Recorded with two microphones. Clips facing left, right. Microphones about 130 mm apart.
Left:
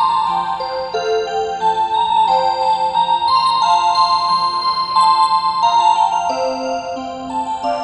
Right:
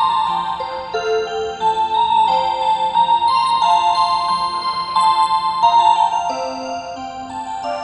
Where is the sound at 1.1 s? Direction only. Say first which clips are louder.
Left 1 dB; 25° left (ahead or behind).